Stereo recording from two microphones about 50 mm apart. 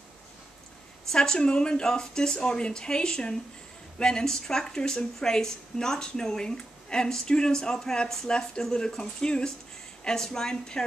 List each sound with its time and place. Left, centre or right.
1.1 s speech: centre